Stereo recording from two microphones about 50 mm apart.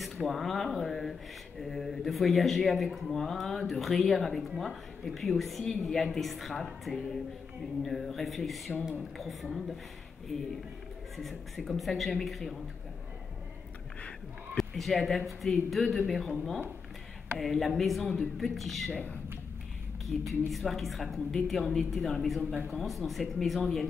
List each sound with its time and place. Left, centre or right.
0.0 s speech: centre
11.1 s speech: centre
14.6 s speech: centre
18.9 s a woman's voice: left
20.1 s speech: centre